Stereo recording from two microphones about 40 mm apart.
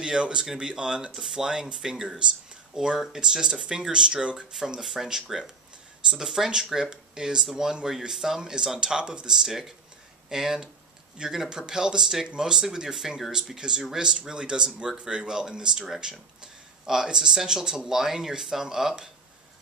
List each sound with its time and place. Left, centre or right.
0.0 s speech: right
4.8 s speech: centre
9.3 s speech: centre
16.8 s speech: centre